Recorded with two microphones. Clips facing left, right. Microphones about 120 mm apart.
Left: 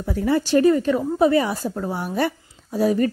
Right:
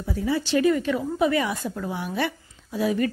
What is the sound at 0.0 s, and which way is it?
Speech, 60° left (ahead or behind).